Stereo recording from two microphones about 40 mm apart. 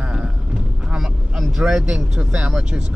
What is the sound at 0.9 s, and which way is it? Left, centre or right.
Vehicle, centre.